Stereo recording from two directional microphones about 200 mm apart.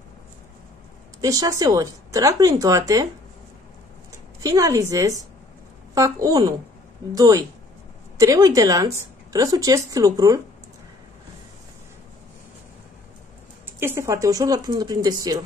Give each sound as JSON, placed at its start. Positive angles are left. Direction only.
{"t": 1.2, "sound": "speech", "side_deg": -15}
{"t": 4.4, "sound": "speech", "side_deg": -15}
{"t": 13.7, "sound": "speech", "side_deg": -10}